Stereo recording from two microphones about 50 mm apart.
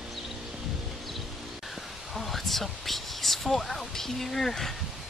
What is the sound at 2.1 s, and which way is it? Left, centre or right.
Speech, centre.